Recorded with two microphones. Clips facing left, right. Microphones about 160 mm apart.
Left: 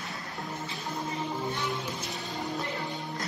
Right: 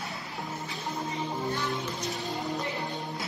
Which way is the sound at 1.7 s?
Centre (ahead or behind).